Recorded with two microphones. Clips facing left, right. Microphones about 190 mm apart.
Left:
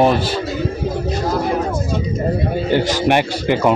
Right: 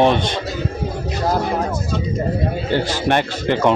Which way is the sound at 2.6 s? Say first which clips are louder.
Left 4 dB; 15° left (ahead or behind).